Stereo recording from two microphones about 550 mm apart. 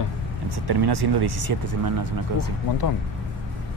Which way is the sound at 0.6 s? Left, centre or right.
Right.